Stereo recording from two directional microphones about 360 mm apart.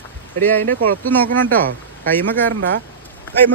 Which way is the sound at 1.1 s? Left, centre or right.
Centre.